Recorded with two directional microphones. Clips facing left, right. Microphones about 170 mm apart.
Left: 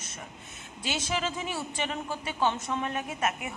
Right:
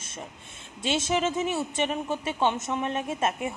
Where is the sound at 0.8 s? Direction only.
25° right (ahead or behind).